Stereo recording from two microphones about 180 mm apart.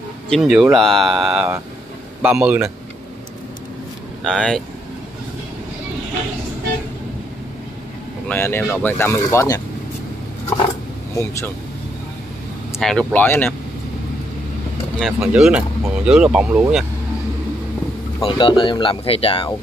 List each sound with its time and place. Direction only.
0.3 s speech: centre (ahead or behind)
4.2 s speech: 5° left (ahead or behind)
8.3 s speech: 10° left (ahead or behind)
12.7 s speech: 5° left (ahead or behind)
15.0 s speech: centre (ahead or behind)
18.2 s speech: 30° left (ahead or behind)